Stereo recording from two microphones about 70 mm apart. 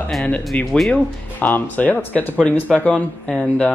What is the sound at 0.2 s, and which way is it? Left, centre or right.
Speech, centre.